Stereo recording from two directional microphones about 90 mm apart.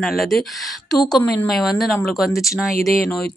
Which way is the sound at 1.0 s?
45° left (ahead or behind).